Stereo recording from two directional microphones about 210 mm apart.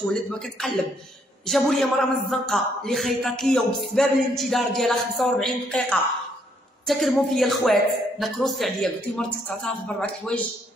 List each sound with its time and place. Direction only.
0.1 s a man's voice: centre (ahead or behind)